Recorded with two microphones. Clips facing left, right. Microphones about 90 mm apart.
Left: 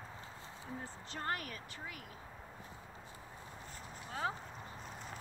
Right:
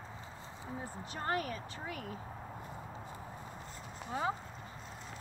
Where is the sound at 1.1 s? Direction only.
25° right (ahead or behind).